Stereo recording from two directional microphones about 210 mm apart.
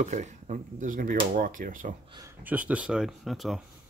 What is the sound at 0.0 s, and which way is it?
Speech, 35° right (ahead or behind).